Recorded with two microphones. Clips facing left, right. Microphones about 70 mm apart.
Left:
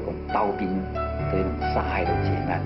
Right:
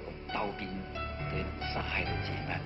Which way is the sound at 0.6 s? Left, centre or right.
Left.